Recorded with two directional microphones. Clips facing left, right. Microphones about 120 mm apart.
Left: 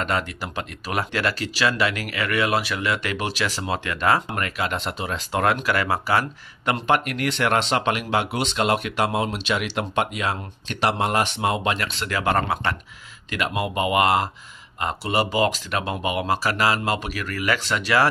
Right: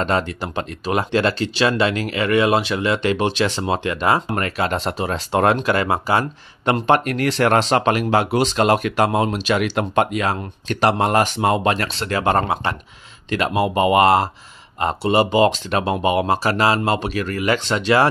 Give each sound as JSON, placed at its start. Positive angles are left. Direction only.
{"t": 0.0, "sound": "speech", "side_deg": -30}
{"t": 4.3, "sound": "speech", "side_deg": -35}